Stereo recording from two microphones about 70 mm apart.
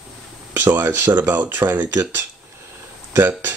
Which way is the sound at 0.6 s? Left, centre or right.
Right.